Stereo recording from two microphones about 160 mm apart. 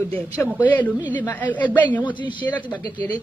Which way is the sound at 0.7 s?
10° left (ahead or behind).